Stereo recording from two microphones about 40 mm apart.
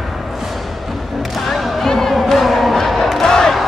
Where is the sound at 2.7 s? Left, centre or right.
Centre.